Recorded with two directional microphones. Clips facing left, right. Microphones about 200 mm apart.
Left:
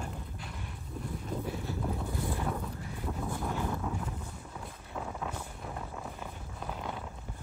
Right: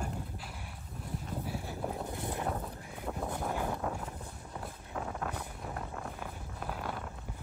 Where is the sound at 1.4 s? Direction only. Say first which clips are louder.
Left 2 dB; 10° right (ahead or behind).